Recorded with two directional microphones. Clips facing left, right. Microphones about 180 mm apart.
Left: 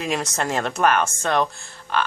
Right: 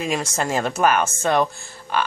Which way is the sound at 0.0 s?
Centre (ahead or behind).